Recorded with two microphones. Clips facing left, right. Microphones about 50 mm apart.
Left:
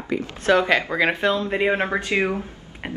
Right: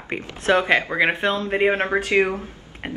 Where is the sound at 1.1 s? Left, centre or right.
Right.